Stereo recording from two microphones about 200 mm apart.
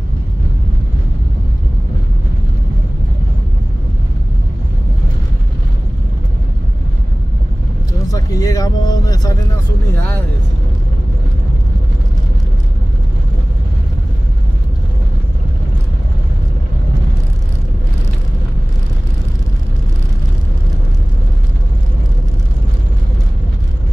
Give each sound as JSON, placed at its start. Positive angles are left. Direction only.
{"t": 8.1, "sound": "vehicle", "side_deg": 15}
{"t": 9.9, "sound": "speech", "side_deg": 10}